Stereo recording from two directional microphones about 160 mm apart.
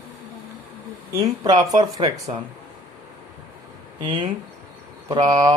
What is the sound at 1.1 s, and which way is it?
Mantra, 25° right (ahead or behind).